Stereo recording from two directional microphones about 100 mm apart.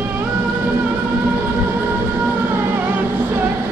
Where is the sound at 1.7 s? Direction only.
25° right (ahead or behind).